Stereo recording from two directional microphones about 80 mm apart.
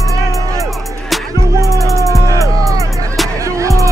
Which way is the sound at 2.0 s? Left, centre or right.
Left.